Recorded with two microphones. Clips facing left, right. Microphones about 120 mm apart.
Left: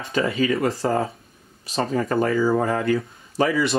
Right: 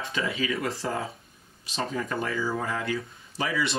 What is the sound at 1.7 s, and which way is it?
Speech, 45° left (ahead or behind).